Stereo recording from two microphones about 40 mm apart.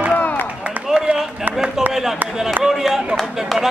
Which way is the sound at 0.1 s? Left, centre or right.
Left.